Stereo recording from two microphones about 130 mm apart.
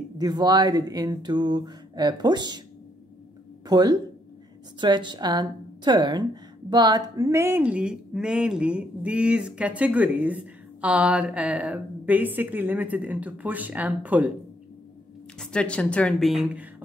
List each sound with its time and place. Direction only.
0.2 s speech: 35° right (ahead or behind)
3.6 s speech: 30° right (ahead or behind); by 14.3 s 10° right (ahead or behind)
15.3 s speech: 5° left (ahead or behind)